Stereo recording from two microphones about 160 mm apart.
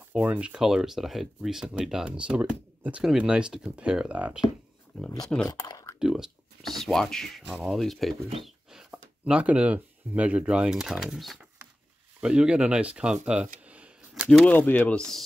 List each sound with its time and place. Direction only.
0.1 s speech: 10° right (ahead or behind)
5.5 s speech: 25° left (ahead or behind)
5.9 s speech: 5° right (ahead or behind)
14.2 s speech: 5° left (ahead or behind)